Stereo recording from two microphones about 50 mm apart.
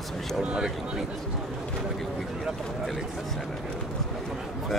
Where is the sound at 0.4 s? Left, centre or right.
Centre.